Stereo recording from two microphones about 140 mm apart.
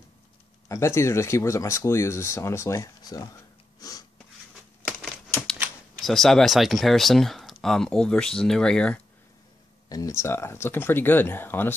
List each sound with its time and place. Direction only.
0.7 s speech: 20° left (ahead or behind)
3.8 s a sound: 25° left (ahead or behind)
5.9 s speech: centre (ahead or behind)
9.8 s speech: 25° left (ahead or behind)